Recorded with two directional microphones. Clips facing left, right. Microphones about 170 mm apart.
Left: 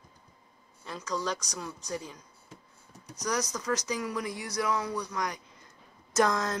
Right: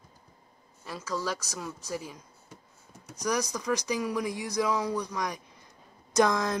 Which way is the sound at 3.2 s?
10° right (ahead or behind).